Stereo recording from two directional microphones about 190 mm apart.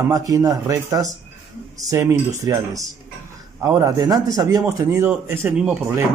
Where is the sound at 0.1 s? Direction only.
20° right (ahead or behind).